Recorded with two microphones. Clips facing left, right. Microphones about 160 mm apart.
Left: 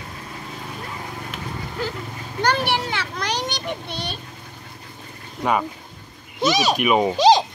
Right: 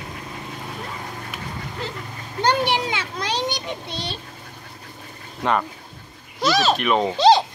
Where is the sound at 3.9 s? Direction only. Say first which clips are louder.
Even; 55° left (ahead or behind).